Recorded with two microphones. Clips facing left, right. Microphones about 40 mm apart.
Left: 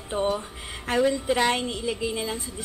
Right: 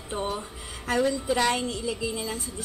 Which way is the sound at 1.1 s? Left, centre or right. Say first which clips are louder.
Left 2 dB; left.